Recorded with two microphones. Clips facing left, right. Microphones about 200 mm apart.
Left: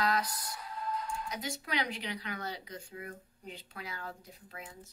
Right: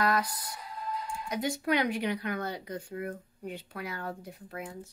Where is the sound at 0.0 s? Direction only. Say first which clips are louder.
Right 3 dB; 55° right (ahead or behind).